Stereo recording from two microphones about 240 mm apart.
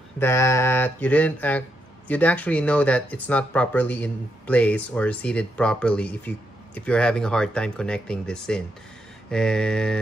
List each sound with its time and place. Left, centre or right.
0.2 s speech: centre